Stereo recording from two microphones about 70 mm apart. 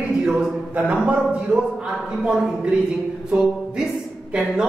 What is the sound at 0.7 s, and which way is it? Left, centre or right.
Speech, centre.